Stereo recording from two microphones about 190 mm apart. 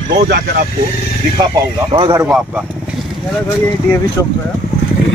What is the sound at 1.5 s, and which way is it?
Speech, 20° right (ahead or behind).